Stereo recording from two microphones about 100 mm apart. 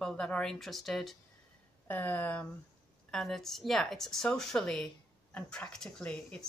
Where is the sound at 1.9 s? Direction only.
20° left (ahead or behind).